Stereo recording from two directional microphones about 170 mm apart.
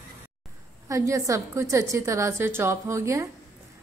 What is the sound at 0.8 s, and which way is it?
A woman's voice, 20° right (ahead or behind).